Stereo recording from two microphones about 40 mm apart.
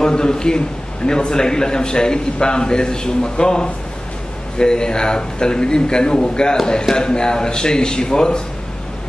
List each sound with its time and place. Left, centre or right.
0.0 s a man's voice: centre